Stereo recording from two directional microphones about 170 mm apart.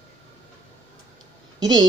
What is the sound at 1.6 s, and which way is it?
Speech, 25° right (ahead or behind).